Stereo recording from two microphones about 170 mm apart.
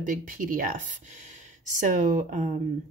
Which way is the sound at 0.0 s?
50° right (ahead or behind).